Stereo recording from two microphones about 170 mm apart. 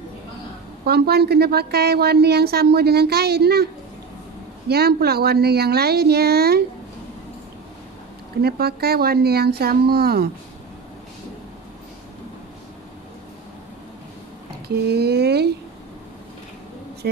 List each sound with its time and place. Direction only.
0.8 s a woman's voice: 70° right (ahead or behind)
4.6 s a woman's voice: 70° right (ahead or behind)
8.4 s a woman's voice: 65° right (ahead or behind)
14.9 s a woman's voice: 70° right (ahead or behind)
17.0 s a woman's voice: 75° right (ahead or behind)